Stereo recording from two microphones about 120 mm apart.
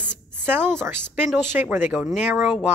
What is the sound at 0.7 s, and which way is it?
Speech, 20° right (ahead or behind).